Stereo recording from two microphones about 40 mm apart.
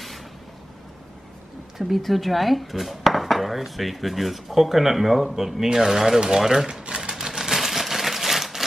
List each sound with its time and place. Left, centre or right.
2.0 s speech: centre; by 7.0 s right
7.1 s sewing machine: centre